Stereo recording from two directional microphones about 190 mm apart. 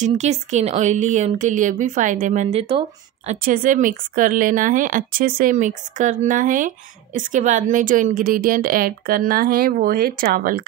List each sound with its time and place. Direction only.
0.0 s speech: 35° right (ahead or behind)
3.3 s a woman's voice: 45° right (ahead or behind)